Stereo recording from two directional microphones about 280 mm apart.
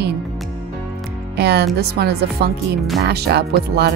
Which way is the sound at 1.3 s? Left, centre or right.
Right.